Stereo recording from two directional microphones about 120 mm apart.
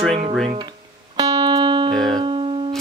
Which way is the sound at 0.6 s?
35° right (ahead or behind).